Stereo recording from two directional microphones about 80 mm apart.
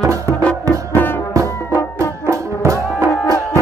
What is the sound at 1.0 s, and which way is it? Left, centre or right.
Music, left.